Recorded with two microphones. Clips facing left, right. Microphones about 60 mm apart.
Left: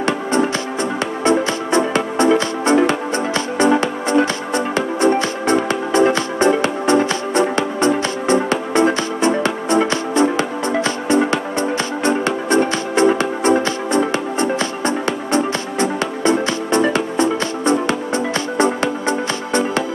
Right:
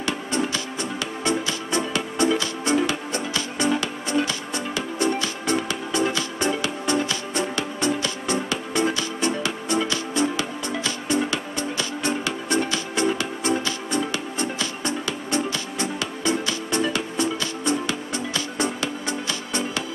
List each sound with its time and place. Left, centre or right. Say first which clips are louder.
0.0 s music: left 8 dB; left